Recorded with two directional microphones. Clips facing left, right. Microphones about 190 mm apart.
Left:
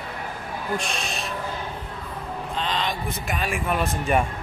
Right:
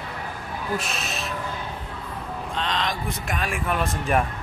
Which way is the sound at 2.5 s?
Centre (ahead or behind).